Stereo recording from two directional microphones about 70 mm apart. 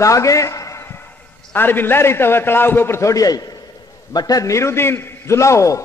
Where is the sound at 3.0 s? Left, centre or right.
Left.